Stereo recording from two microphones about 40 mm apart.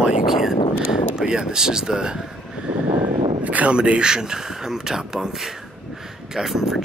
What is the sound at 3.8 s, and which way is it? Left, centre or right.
Speech, right.